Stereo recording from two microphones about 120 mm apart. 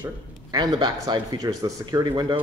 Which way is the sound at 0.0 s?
35° right (ahead or behind).